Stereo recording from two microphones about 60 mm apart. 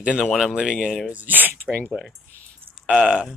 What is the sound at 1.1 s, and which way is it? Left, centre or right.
Speech, right.